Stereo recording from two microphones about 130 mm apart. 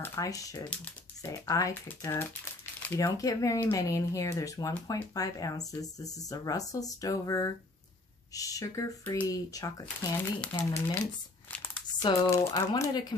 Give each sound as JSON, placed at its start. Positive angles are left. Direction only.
{"t": 0.0, "sound": "speech", "side_deg": 25}
{"t": 1.7, "sound": "speech", "side_deg": 15}
{"t": 10.1, "sound": "speech", "side_deg": 15}
{"t": 12.3, "sound": "speech", "side_deg": 25}